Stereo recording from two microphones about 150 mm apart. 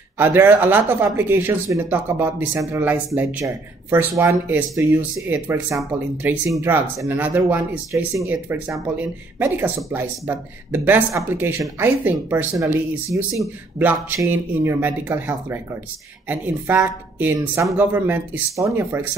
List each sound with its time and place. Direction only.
0.2 s speech: 15° right (ahead or behind)